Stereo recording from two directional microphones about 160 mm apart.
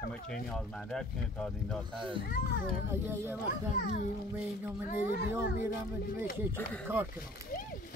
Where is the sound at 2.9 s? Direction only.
15° right (ahead or behind).